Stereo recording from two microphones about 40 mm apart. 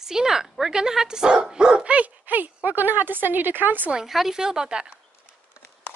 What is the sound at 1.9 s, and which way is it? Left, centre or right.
Speech, right.